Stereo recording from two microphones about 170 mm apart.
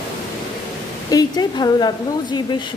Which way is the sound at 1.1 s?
20° left (ahead or behind).